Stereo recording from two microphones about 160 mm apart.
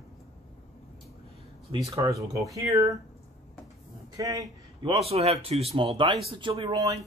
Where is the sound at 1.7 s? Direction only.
20° right (ahead or behind).